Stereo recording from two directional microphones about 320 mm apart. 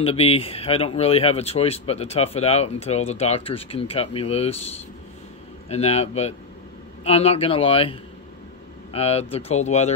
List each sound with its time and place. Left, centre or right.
0.0 s speech: centre